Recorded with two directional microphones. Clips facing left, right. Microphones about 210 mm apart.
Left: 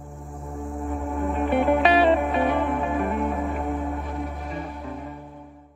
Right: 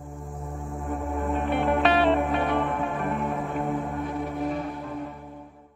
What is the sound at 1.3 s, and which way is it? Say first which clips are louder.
Music: left 4 dB; centre (ahead or behind).